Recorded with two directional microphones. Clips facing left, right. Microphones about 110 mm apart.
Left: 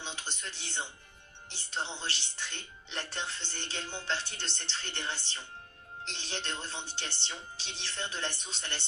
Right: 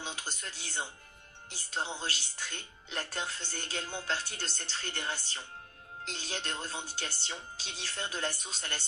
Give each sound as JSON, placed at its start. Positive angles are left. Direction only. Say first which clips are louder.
{"t": 0.0, "sound": "speech", "louder": "right 1 dB", "side_deg": -40}